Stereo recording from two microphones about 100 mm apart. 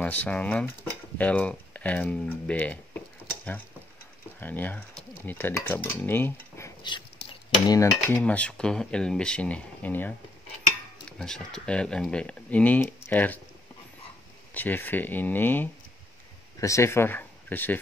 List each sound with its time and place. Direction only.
0.0 s speech: 15° left (ahead or behind)
4.4 s speech: 20° left (ahead or behind)
6.8 s cutlery: 50° left (ahead or behind)
8.1 s speech: 15° left (ahead or behind)
11.1 s speech: 5° left (ahead or behind)
14.5 s speech: 20° left (ahead or behind)
16.5 s speech: 30° left (ahead or behind)